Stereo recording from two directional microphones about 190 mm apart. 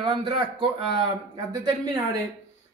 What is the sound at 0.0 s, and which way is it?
A man's voice, 25° right (ahead or behind).